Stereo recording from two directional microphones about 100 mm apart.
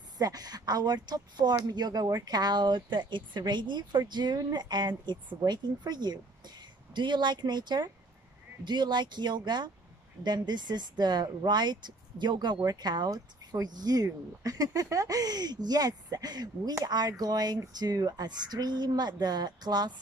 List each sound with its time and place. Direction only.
0.2 s speech: 40° right (ahead or behind)